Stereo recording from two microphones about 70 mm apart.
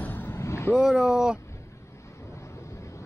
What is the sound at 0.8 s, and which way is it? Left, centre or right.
Speech, centre.